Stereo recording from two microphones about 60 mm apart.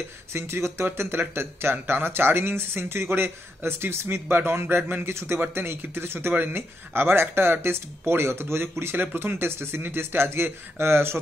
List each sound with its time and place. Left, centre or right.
0.3 s speech: right
0.8 s speech: right